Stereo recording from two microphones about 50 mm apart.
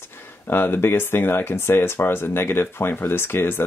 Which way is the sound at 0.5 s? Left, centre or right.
Left.